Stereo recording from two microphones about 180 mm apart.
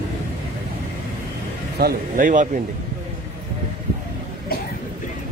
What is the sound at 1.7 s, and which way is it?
Speech, 55° right (ahead or behind).